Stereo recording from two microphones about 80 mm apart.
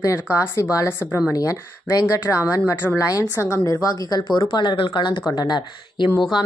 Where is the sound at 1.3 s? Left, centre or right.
Left.